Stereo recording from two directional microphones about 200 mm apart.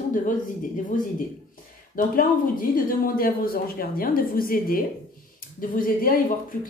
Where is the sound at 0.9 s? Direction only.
40° left (ahead or behind).